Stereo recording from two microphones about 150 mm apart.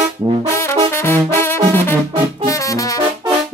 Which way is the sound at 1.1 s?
15° left (ahead or behind).